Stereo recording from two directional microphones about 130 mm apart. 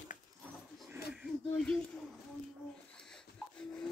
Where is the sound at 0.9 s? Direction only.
10° right (ahead or behind).